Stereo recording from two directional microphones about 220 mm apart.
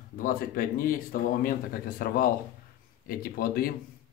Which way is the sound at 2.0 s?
40° left (ahead or behind).